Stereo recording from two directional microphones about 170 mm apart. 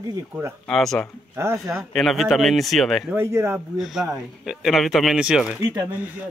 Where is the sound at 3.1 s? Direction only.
15° right (ahead or behind).